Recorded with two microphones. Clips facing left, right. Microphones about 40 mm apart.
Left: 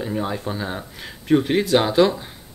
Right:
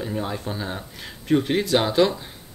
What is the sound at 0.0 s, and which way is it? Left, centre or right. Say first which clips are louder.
Speech: left 3 dB; centre.